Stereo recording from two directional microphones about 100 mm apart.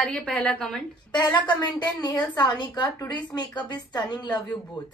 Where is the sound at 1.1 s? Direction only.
45° left (ahead or behind).